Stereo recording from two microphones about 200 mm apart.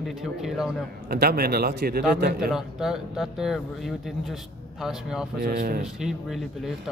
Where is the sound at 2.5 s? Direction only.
Centre (ahead or behind).